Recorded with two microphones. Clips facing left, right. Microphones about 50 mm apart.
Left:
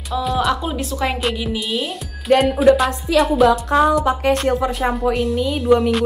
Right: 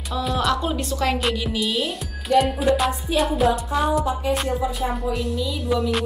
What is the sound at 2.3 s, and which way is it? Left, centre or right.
Speech, left.